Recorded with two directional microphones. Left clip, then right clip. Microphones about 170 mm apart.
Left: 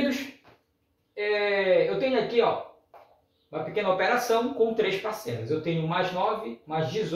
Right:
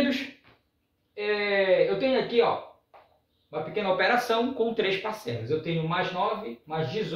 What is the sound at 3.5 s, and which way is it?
Speech, 15° right (ahead or behind).